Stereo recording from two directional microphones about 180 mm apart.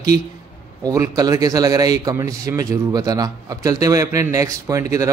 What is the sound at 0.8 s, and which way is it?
A man's voice, 20° right (ahead or behind).